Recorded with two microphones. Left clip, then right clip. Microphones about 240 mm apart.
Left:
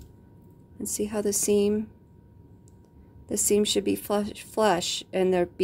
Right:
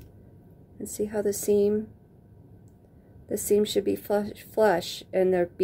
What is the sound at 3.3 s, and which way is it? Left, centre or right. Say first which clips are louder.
Speech: even; left.